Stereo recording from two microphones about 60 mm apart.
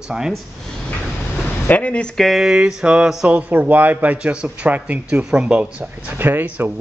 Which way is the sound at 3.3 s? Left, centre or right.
Right.